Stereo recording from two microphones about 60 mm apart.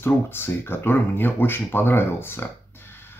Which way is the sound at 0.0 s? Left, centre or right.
Left.